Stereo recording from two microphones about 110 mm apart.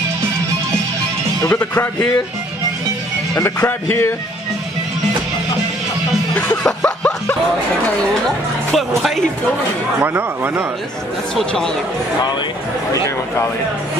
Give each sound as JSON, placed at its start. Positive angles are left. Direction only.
{"t": 1.4, "sound": "a man's voice", "side_deg": 15}
{"t": 3.3, "sound": "speech", "side_deg": 25}
{"t": 6.3, "sound": "a sound", "side_deg": 10}
{"t": 8.7, "sound": "speech", "side_deg": 0}
{"t": 10.0, "sound": "speech", "side_deg": -20}
{"t": 11.3, "sound": "speech", "side_deg": 5}